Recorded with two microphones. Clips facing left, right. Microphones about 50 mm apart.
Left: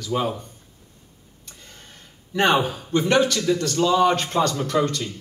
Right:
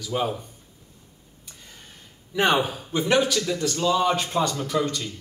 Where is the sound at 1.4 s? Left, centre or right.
Centre.